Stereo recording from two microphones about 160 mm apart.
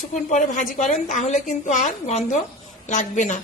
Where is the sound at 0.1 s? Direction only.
50° left (ahead or behind).